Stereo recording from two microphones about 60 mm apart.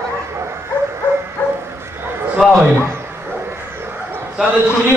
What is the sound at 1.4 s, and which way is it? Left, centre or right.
Bow-wow, left.